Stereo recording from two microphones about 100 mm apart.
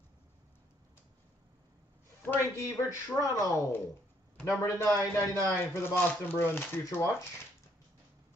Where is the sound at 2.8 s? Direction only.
35° left (ahead or behind).